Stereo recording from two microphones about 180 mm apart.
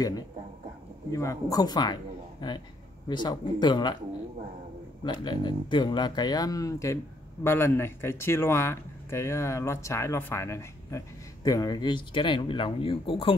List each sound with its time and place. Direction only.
1.1 s speech: 15° left (ahead or behind)
5.0 s speech: 25° left (ahead or behind)